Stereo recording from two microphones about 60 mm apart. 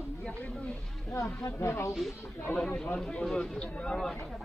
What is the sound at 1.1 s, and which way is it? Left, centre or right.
Speech, left.